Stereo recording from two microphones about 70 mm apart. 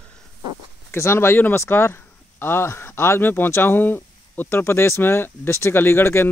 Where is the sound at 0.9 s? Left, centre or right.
Left.